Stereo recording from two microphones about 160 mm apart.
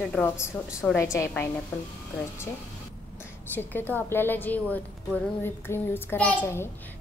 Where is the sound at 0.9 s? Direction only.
20° left (ahead or behind).